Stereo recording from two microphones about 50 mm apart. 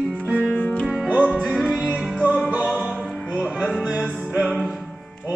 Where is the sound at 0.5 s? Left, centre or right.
Left.